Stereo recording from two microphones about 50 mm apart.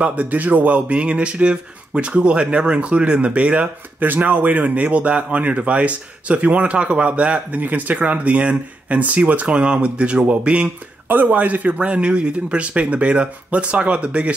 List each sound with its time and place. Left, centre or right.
0.0 s speech: right
4.0 s speech: right
11.1 s speech: right